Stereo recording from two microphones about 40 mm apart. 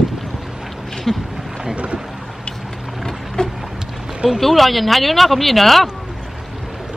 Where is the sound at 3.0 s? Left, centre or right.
Centre.